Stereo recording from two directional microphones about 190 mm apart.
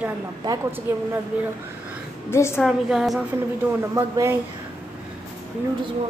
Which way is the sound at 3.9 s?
15° right (ahead or behind).